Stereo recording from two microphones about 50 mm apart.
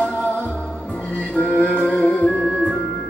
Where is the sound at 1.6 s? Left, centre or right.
Left.